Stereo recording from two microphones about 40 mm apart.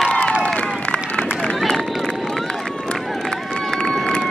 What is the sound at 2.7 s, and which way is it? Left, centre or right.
Run, centre.